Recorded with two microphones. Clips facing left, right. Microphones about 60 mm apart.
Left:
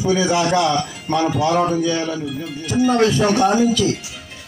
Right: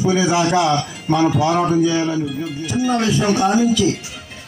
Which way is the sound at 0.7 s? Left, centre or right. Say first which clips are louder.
Right 1 dB; centre.